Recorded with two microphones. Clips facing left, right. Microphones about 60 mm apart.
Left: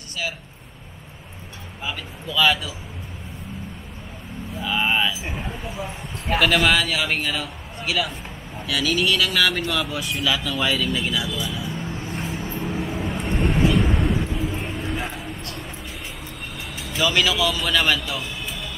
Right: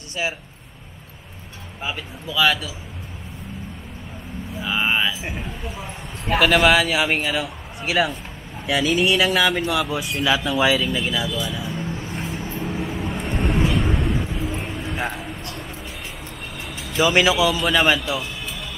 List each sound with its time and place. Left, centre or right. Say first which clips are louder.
0.2 s a man's voice: right 3 dB; right
2.2 s a man's voice: even; centre
4.6 s speech: even; centre
7.8 s a man's voice: right 4 dB; right
9.7 s speech: right 3 dB; centre
11.2 s vehicle: right 2 dB; centre
16.9 s a man's voice: right 4 dB; right